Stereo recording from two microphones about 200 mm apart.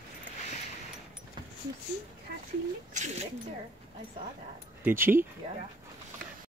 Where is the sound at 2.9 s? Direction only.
35° right (ahead or behind).